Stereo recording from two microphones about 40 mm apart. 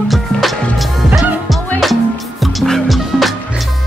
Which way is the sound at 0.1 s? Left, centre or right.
Centre.